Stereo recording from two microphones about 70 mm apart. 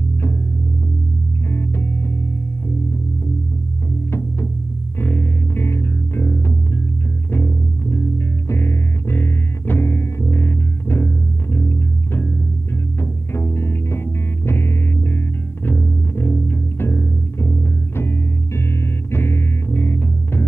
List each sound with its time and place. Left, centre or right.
1.5 s music: left
4.9 s music: left